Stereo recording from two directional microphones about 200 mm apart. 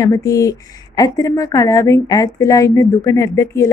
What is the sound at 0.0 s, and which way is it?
A woman's voice, 15° left (ahead or behind).